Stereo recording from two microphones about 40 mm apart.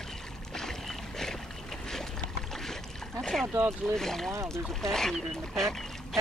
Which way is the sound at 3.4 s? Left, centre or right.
Right.